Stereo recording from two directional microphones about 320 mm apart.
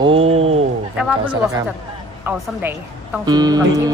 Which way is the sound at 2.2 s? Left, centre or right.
Centre.